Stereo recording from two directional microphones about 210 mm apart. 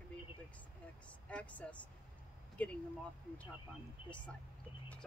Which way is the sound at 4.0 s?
25° left (ahead or behind).